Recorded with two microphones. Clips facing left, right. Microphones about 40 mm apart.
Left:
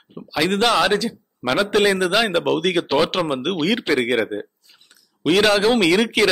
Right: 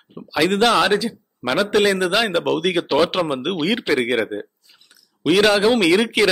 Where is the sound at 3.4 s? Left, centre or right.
Centre.